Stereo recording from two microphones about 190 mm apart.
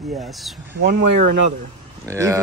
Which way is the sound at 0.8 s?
50° right (ahead or behind).